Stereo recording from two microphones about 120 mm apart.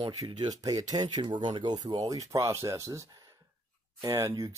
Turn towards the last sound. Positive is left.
turn(degrees=-25)  # may be behind; listen again after turning